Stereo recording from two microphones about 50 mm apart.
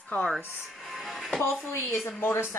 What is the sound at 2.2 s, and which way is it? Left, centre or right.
Speech, left.